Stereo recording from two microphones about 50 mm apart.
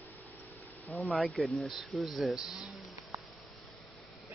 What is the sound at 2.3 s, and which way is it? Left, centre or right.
Speech, centre.